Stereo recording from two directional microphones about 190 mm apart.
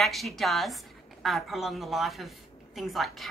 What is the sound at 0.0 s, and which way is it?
A woman's voice, centre (ahead or behind).